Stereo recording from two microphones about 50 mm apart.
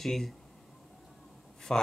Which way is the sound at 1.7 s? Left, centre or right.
Centre.